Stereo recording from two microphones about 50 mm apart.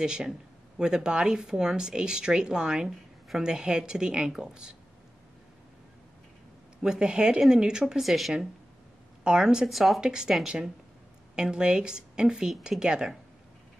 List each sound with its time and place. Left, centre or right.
0.0 s speech: centre
6.8 s speech: centre
9.2 s speech: centre
9.7 s speech: centre
9.9 s speech: centre